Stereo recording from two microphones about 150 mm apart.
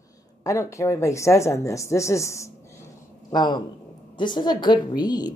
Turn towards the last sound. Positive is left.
turn(degrees=25)  # may be behind; listen again after turning